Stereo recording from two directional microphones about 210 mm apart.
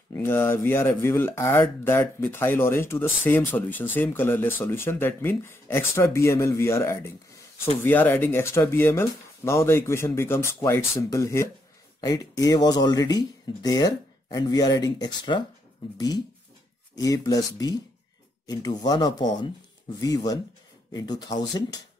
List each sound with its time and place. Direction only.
0.1 s speech: 10° left (ahead or behind)
16.9 s speech: 15° left (ahead or behind)
20.9 s speech: 20° left (ahead or behind)